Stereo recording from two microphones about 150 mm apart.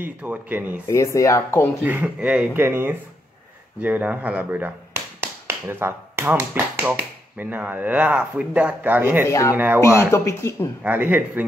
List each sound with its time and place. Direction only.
0.0 s speech: 10° right (ahead or behind)
0.8 s speech: 20° left (ahead or behind)
1.8 s speech: 10° right (ahead or behind)
9.2 s speech: 20° left (ahead or behind)
10.8 s speech: 10° right (ahead or behind)